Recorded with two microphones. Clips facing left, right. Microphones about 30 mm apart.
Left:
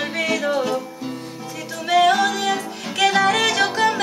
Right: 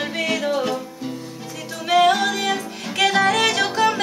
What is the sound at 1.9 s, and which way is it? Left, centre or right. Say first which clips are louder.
Music: even; centre.